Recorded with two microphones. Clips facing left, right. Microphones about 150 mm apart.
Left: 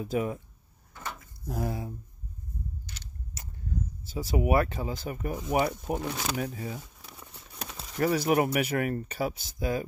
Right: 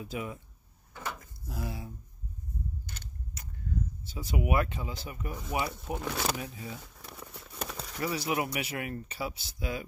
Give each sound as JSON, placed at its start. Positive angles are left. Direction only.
{"t": 0.0, "sound": "speech", "side_deg": 40}
{"t": 1.5, "sound": "speech", "side_deg": 45}
{"t": 2.9, "sound": "a sound", "side_deg": -50}
{"t": 4.0, "sound": "speech", "side_deg": 40}
{"t": 8.0, "sound": "speech", "side_deg": 50}